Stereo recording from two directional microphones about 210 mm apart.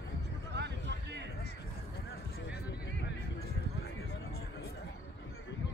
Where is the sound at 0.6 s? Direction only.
55° right (ahead or behind).